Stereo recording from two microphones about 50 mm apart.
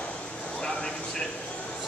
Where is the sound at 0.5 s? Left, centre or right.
Centre.